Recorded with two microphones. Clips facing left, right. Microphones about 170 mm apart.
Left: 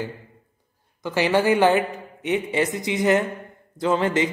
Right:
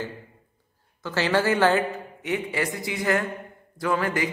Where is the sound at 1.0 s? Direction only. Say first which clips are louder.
Left 3 dB; 15° left (ahead or behind).